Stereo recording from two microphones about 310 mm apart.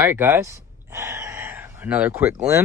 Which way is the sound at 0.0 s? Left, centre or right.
Centre.